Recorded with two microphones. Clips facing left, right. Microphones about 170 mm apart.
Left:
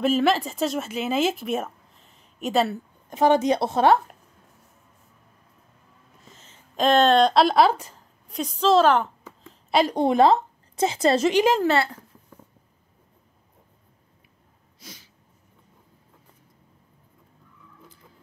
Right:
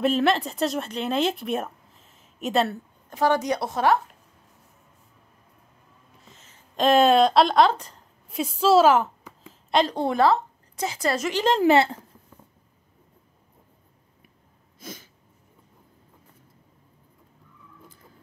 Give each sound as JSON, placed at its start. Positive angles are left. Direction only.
{"t": 0.0, "sound": "speech", "side_deg": 0}
{"t": 3.1, "sound": "speech", "side_deg": 20}
{"t": 6.8, "sound": "a woman's voice", "side_deg": -5}
{"t": 8.3, "sound": "a woman's voice", "side_deg": -5}
{"t": 9.9, "sound": "a woman's voice", "side_deg": 20}
{"t": 11.6, "sound": "speech", "side_deg": -20}
{"t": 14.8, "sound": "sneeze", "side_deg": -50}